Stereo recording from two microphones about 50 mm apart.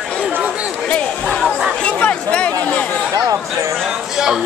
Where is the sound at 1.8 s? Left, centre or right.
Left.